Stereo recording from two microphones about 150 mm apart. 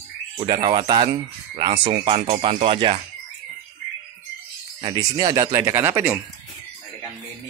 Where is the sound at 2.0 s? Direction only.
40° right (ahead or behind).